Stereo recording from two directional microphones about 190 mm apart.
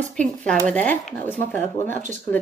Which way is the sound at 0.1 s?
5° left (ahead or behind).